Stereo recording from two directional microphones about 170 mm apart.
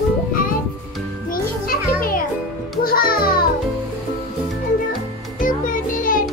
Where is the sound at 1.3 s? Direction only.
60° left (ahead or behind).